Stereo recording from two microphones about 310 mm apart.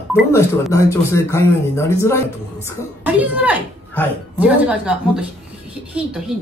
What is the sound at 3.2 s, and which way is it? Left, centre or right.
A woman's voice, centre.